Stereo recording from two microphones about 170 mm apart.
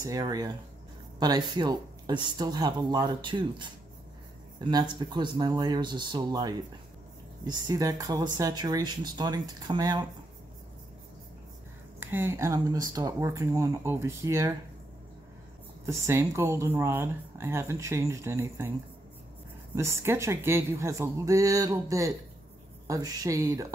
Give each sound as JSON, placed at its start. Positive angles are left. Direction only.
{"t": 0.0, "sound": "speech", "side_deg": -20}
{"t": 12.0, "sound": "speech", "side_deg": -10}
{"t": 15.8, "sound": "speech", "side_deg": -15}
{"t": 19.7, "sound": "speech", "side_deg": -15}